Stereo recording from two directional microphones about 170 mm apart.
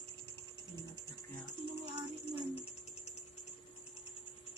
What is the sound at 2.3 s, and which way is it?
Music, 35° left (ahead or behind).